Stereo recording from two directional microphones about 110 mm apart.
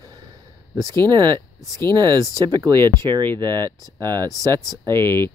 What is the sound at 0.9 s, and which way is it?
Speech, 40° right (ahead or behind).